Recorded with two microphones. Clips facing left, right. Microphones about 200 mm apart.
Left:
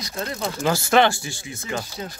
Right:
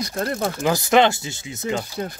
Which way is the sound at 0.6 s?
15° right (ahead or behind).